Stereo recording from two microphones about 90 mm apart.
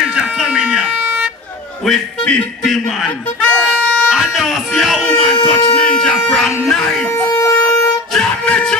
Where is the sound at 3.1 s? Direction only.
15° left (ahead or behind).